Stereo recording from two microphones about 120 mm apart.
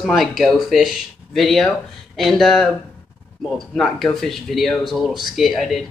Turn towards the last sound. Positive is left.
turn(degrees=0)  # may be behind; listen again after turning